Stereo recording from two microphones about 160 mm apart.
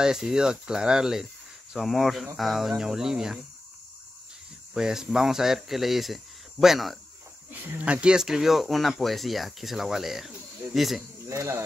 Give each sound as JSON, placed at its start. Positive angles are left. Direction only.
{"t": 0.0, "sound": "speech", "side_deg": -5}
{"t": 4.7, "sound": "speech", "side_deg": -5}
{"t": 11.2, "sound": "speech", "side_deg": -20}